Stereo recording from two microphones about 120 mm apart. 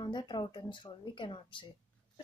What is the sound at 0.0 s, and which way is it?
A woman's voice, 40° left (ahead or behind).